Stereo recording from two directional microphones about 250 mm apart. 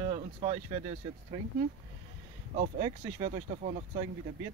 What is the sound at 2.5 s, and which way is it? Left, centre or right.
Speech, right.